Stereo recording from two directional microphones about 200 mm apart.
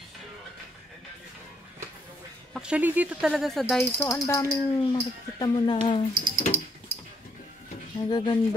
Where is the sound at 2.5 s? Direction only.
5° right (ahead or behind).